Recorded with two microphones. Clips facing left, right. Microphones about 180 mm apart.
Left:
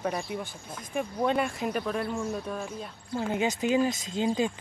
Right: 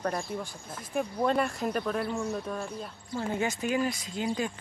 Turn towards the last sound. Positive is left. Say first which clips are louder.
# left 4 dB
turn(degrees=20)  # may be behind; listen again after turning